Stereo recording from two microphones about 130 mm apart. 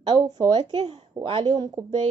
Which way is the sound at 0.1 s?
55° right (ahead or behind).